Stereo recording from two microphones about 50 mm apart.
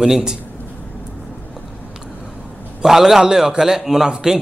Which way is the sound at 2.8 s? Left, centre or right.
Centre.